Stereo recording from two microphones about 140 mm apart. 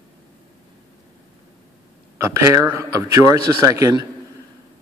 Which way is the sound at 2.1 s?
20° right (ahead or behind).